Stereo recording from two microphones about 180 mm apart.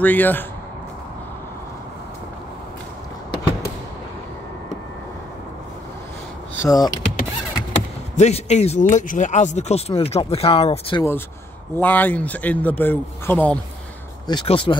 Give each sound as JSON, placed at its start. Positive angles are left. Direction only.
{"t": 0.0, "sound": "speech", "side_deg": 10}
{"t": 6.6, "sound": "speech", "side_deg": 20}
{"t": 8.2, "sound": "speech", "side_deg": 40}
{"t": 11.0, "sound": "speech", "side_deg": 15}
{"t": 14.2, "sound": "speech", "side_deg": 30}